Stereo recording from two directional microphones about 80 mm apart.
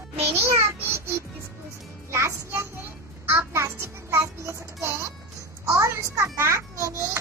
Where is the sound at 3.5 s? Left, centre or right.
Right.